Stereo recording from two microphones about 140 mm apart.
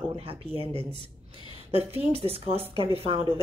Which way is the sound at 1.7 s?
45° right (ahead or behind).